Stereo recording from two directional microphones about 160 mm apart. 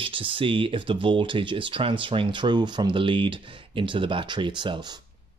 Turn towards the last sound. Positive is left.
turn(degrees=-30)  # may be behind; listen again after turning